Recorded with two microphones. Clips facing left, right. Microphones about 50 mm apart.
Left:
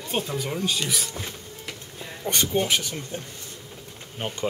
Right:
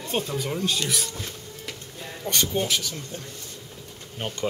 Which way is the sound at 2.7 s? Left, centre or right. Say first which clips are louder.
Left 2 dB; left.